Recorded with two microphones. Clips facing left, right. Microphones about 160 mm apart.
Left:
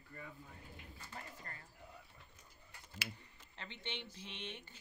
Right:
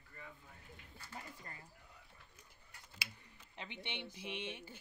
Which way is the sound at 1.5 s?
15° right (ahead or behind).